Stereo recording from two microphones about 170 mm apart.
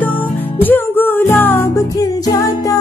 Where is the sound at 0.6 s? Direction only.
10° left (ahead or behind).